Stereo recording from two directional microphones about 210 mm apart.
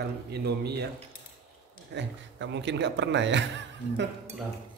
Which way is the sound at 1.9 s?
60° right (ahead or behind).